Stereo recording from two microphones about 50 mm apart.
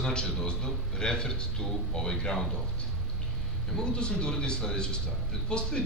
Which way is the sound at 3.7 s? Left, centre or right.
Centre.